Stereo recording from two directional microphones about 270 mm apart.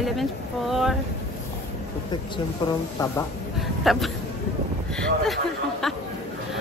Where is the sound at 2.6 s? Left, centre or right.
Centre.